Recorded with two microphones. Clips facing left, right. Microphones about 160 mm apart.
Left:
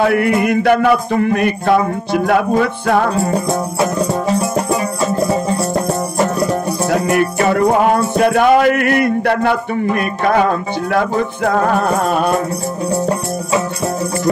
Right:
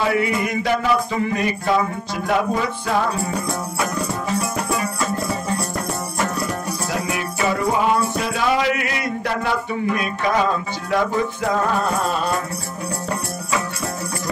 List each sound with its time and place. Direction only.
0.0 s music: 60° left (ahead or behind)
4.0 s music: 30° left (ahead or behind)
6.9 s music: 60° left (ahead or behind)